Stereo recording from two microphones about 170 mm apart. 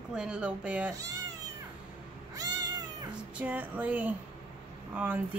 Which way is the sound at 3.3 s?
10° right (ahead or behind).